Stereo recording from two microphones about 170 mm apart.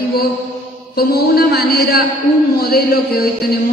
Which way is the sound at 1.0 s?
65° left (ahead or behind).